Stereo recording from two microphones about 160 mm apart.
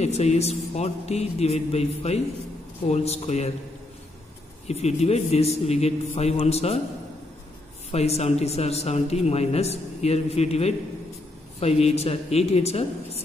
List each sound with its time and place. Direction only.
0.0 s a man's voice: 45° left (ahead or behind)
4.6 s speech: 40° left (ahead or behind)
7.9 s speech: 40° left (ahead or behind)